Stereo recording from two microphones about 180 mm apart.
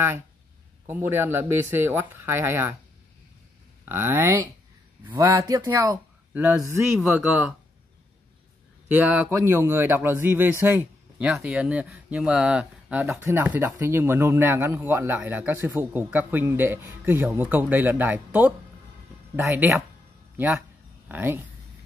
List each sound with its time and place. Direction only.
0.8 s speech: 10° right (ahead or behind)
3.8 s speech: 15° right (ahead or behind)
8.9 s speech: 10° right (ahead or behind)
21.1 s speech: 10° right (ahead or behind)